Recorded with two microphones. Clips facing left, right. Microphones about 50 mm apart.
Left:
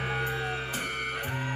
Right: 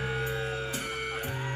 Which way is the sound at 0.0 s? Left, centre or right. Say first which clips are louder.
Left 1 dB; left.